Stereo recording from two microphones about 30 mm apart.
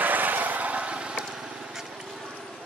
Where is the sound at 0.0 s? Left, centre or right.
Right.